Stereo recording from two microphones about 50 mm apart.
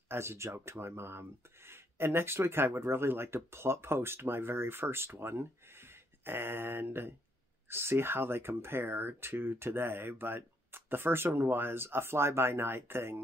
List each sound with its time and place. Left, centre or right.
0.1 s speech: right